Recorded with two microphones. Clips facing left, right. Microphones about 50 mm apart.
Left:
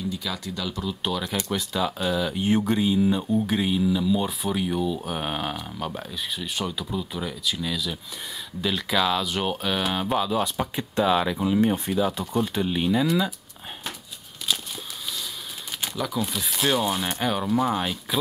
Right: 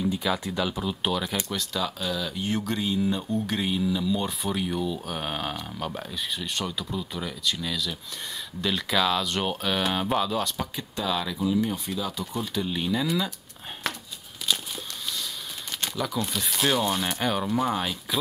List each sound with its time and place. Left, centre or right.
0.1 s speech: right; by 1.4 s centre
1.5 s speech: centre
10.4 s speech: centre
11.0 s speech: left
12.5 s speech: left
13.0 s speech: centre
15.8 s speech: centre